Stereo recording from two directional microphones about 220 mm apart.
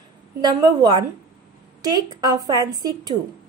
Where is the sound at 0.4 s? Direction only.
15° right (ahead or behind).